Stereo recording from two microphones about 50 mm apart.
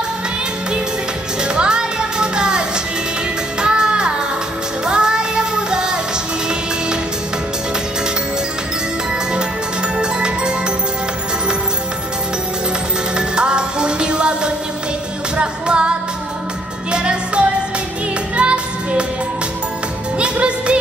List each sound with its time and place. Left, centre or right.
1.4 s music: centre
3.6 s music: centre
9.9 s music: centre
13.1 s music: centre
16.9 s music: centre
20.2 s music: right